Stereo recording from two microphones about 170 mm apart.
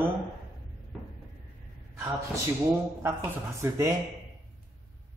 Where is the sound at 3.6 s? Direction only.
15° right (ahead or behind).